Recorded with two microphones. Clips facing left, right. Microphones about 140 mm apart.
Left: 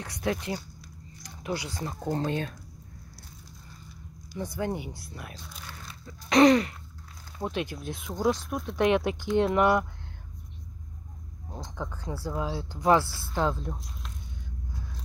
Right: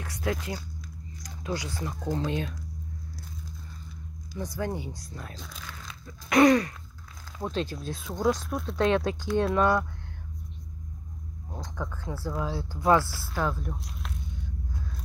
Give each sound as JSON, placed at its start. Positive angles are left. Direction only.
{"t": 0.0, "sound": "speech", "side_deg": 20}
{"t": 2.0, "sound": "speech", "side_deg": 40}
{"t": 4.6, "sound": "speech", "side_deg": 15}
{"t": 6.0, "sound": "a sound", "side_deg": 30}
{"t": 7.4, "sound": "speech", "side_deg": 15}
{"t": 11.6, "sound": "speech", "side_deg": 15}
{"t": 13.7, "sound": "speech", "side_deg": -70}